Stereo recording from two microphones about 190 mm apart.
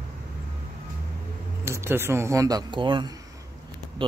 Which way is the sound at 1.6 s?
15° right (ahead or behind).